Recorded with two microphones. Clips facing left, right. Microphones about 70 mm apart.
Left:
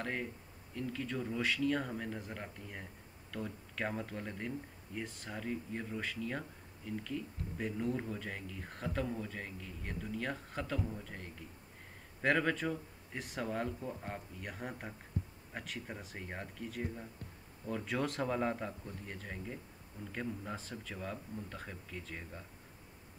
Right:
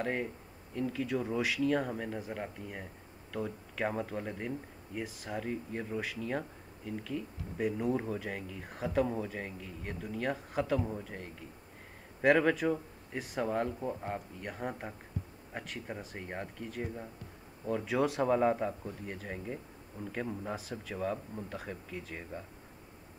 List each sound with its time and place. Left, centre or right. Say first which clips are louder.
0.0 s speech: right 5 dB; centre
12.2 s speech: right 6 dB; centre
20.0 s a man's voice: right 5 dB; right
20.4 s speech: right 5 dB; centre